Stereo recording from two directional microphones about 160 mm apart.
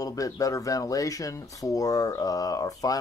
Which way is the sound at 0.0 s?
20° left (ahead or behind).